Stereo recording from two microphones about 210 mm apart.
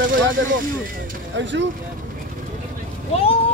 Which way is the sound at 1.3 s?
60° right (ahead or behind).